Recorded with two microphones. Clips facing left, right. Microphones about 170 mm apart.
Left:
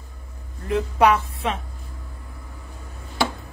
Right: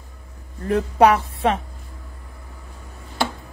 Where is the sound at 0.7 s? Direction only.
40° right (ahead or behind).